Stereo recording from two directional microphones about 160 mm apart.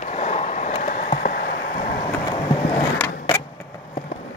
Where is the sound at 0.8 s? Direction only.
55° left (ahead or behind).